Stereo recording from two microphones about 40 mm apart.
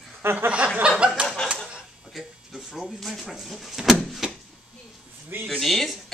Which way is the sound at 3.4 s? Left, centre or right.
Centre.